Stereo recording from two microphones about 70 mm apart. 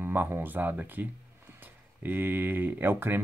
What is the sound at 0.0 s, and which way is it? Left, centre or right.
Speech, right.